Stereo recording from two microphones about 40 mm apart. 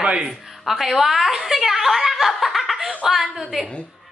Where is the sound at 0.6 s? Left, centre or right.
Centre.